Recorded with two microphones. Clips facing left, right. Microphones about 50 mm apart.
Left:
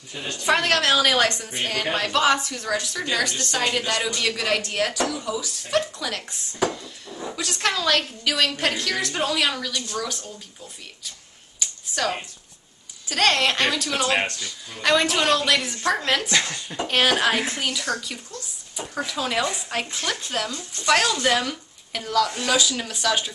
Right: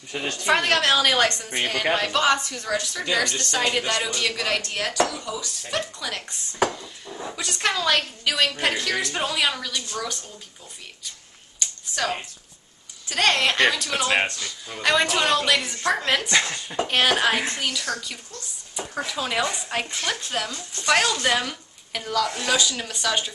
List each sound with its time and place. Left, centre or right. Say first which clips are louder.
0.1 s a woman's voice: right 3 dB; right
0.5 s a woman's voice: even; centre
11.6 s a sound: left 1 dB; centre
13.1 s a woman's voice: left 1 dB; centre
18.9 s a woman's voice: left 1 dB; centre